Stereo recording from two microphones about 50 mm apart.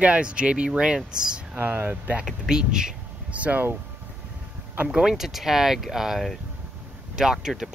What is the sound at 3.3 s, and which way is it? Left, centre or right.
Speech, right.